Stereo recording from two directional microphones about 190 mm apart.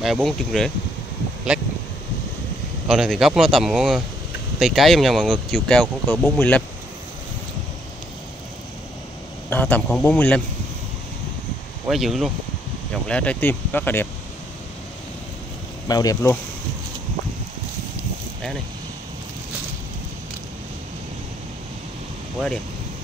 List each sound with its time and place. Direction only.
0.0 s speech: centre (ahead or behind)
1.5 s a sound: 5° right (ahead or behind)
2.9 s speech: centre (ahead or behind)
9.5 s speech: 10° left (ahead or behind)
11.9 s speech: centre (ahead or behind)
15.9 s speech: 20° left (ahead or behind)